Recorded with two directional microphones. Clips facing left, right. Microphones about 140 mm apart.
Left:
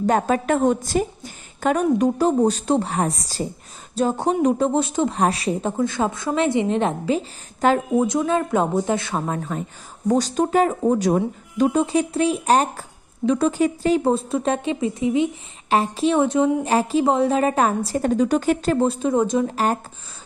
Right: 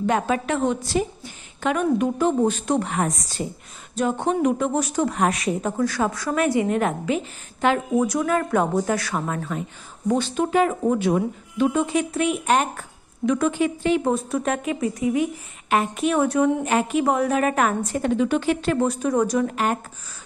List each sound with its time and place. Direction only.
0.0 s a woman's voice: 40° left (ahead or behind)
8.1 s a woman's voice: 20° left (ahead or behind)
9.5 s speech: 40° left (ahead or behind); by 16.5 s 20° left (ahead or behind)
16.6 s speech: 35° left (ahead or behind)
19.5 s speech: 35° left (ahead or behind)